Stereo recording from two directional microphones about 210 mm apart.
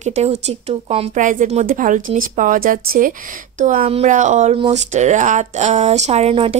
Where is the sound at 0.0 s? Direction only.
30° right (ahead or behind).